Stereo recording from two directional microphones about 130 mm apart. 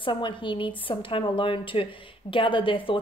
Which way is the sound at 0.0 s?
40° left (ahead or behind).